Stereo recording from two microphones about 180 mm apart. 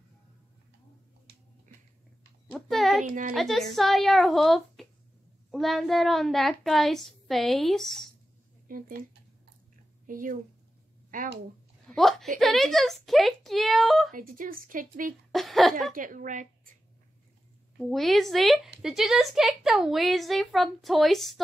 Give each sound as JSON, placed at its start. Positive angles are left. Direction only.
{"t": 2.5, "sound": "a sound", "side_deg": 0}
{"t": 3.3, "sound": "a woman's voice", "side_deg": 0}
{"t": 8.6, "sound": "speech", "side_deg": -50}
{"t": 10.0, "sound": "speech", "side_deg": -50}
{"t": 11.9, "sound": "a woman's voice", "side_deg": 0}
{"t": 14.1, "sound": "speech", "side_deg": -50}
{"t": 15.3, "sound": "a woman's voice", "side_deg": 0}
{"t": 15.9, "sound": "speech", "side_deg": -50}
{"t": 17.7, "sound": "a woman's voice", "side_deg": 0}